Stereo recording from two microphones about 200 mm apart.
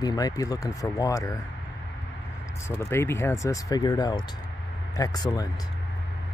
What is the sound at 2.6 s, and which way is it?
Speech, 15° left (ahead or behind).